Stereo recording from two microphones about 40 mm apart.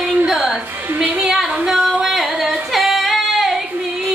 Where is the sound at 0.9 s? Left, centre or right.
Right.